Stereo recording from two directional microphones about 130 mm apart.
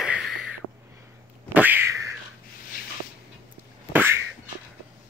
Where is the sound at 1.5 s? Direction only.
15° right (ahead or behind).